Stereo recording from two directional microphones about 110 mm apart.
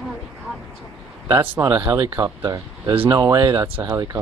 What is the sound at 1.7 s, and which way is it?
Speech, 35° right (ahead or behind).